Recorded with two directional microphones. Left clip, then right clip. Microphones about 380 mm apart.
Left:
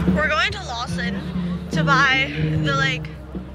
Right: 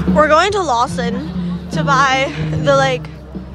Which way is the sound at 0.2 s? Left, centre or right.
Centre.